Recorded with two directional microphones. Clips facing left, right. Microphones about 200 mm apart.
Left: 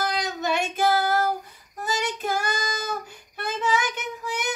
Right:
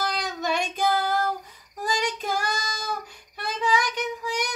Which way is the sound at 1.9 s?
5° left (ahead or behind).